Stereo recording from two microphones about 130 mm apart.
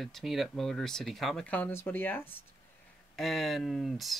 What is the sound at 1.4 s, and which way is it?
Speech, 10° left (ahead or behind).